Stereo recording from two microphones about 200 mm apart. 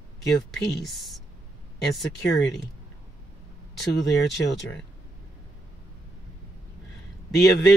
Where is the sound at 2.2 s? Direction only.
60° left (ahead or behind).